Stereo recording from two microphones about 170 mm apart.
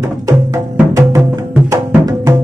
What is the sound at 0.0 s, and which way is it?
Music, 20° right (ahead or behind).